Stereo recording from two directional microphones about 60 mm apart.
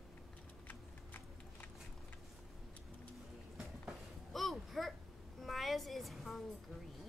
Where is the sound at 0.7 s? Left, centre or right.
Left.